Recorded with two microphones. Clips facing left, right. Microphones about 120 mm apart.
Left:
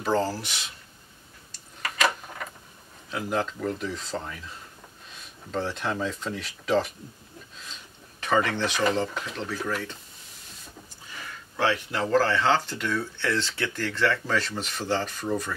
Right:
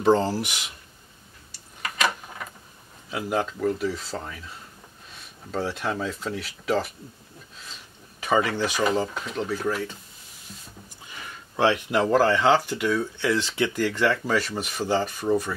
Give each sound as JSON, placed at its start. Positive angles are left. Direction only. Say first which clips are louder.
{"t": 0.0, "sound": "speech", "louder": "right 5 dB", "side_deg": -20}
{"t": 3.1, "sound": "speech", "louder": "right 2 dB", "side_deg": -5}
{"t": 8.2, "sound": "speech", "louder": "right 1 dB", "side_deg": -5}
{"t": 11.2, "sound": "speech", "louder": "right 4 dB", "side_deg": -20}